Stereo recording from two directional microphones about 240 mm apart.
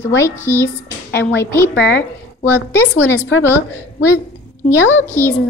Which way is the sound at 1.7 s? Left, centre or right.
Left.